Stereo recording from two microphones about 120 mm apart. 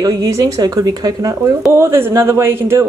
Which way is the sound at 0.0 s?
30° right (ahead or behind).